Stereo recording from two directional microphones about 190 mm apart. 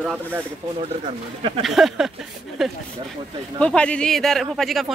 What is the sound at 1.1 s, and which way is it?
Speech, 30° right (ahead or behind).